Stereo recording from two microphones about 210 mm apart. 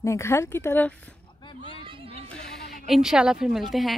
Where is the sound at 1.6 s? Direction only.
25° right (ahead or behind).